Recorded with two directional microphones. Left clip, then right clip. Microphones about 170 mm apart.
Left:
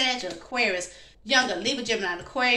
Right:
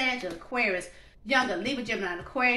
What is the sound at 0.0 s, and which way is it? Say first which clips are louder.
A woman's voice: left 3 dB; 20° right (ahead or behind).